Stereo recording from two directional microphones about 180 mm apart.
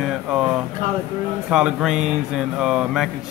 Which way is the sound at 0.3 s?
5° right (ahead or behind).